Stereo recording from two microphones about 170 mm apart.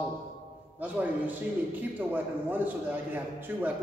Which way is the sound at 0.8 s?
10° right (ahead or behind).